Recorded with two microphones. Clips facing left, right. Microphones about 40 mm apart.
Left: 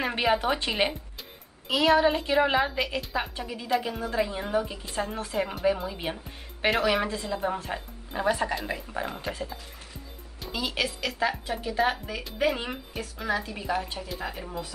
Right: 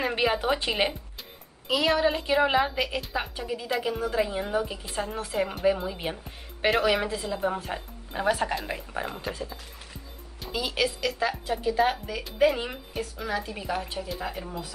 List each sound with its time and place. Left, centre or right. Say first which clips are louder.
0.0 s speech: even; centre
8.6 s speech: even; centre
9.0 s speech: even; centre
10.4 s speech: right 2 dB; centre